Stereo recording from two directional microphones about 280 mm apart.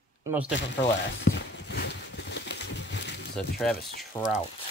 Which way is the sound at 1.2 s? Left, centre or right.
Left.